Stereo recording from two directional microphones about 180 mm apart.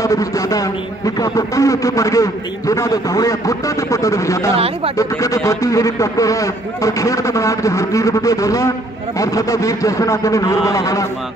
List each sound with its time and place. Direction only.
0.0 s a man's voice: 20° left (ahead or behind)
4.6 s speech: 30° right (ahead or behind)
4.9 s a man's voice: 20° left (ahead or behind)